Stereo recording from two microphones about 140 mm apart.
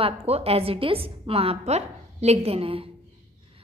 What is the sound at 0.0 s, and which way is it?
A woman's voice, 45° right (ahead or behind).